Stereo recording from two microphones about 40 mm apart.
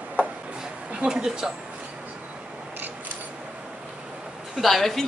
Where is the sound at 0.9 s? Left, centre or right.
Right.